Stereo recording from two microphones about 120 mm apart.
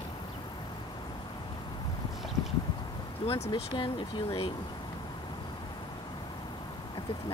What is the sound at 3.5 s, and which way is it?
Speech, 40° left (ahead or behind).